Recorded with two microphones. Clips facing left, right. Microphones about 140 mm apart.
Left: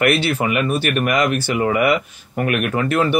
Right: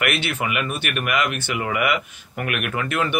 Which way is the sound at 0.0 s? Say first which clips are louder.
Left 7 dB; 35° left (ahead or behind).